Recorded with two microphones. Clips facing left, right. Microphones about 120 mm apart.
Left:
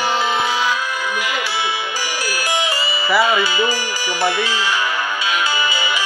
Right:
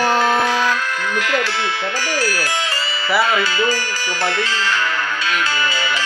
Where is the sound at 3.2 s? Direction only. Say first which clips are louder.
Left 1 dB; 10° left (ahead or behind).